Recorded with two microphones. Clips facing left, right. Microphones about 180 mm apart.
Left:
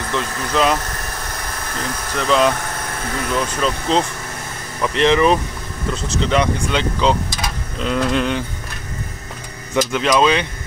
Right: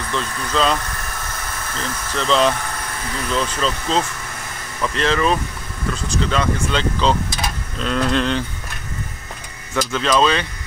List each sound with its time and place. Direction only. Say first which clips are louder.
0.1 s speech: left 2 dB; 15° left (ahead or behind)
2.1 s speech: left 1 dB; 10° left (ahead or behind)
9.8 s speech: left 2 dB; 15° left (ahead or behind)